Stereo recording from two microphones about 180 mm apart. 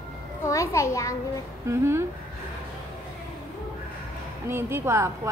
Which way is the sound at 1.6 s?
15° right (ahead or behind).